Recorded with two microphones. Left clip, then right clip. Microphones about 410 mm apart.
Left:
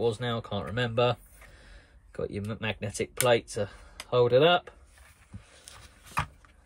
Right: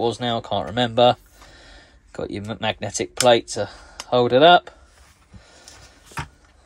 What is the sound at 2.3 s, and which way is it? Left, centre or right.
Speech, centre.